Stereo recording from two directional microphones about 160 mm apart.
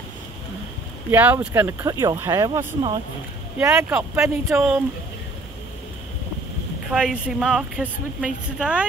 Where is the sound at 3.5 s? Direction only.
10° right (ahead or behind).